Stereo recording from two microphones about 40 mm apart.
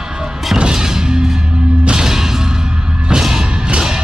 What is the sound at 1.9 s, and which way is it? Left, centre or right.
Music, centre.